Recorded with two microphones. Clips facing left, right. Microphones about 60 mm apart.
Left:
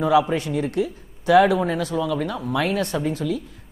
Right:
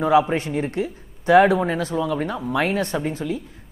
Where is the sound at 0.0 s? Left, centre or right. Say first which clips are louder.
Right 1 dB; right.